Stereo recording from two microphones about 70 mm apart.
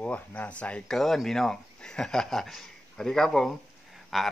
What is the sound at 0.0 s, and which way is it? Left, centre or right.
Speech, left.